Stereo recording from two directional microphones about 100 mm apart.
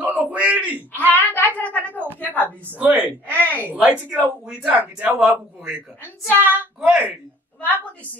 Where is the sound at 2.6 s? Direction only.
15° right (ahead or behind).